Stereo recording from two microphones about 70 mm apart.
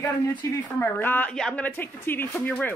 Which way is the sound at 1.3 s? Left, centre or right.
Centre.